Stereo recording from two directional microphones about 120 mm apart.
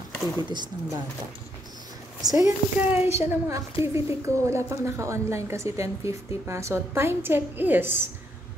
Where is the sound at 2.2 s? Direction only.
30° right (ahead or behind).